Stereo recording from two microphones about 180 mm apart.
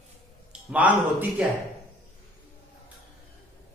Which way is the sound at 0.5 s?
5° right (ahead or behind).